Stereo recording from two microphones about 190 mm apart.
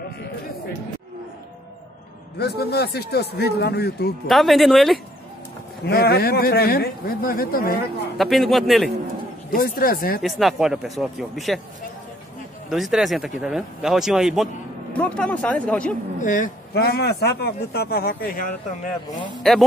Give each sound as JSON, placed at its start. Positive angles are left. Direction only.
{"t": 2.3, "sound": "speech", "side_deg": 55}
{"t": 4.3, "sound": "speech", "side_deg": 0}
{"t": 5.9, "sound": "speech", "side_deg": 55}
{"t": 8.2, "sound": "speech", "side_deg": 0}
{"t": 9.5, "sound": "speech", "side_deg": 50}
{"t": 10.2, "sound": "speech", "side_deg": 0}
{"t": 12.6, "sound": "speech", "side_deg": 0}
{"t": 16.2, "sound": "speech", "side_deg": 40}
{"t": 16.7, "sound": "speech", "side_deg": 55}
{"t": 19.3, "sound": "speech", "side_deg": 0}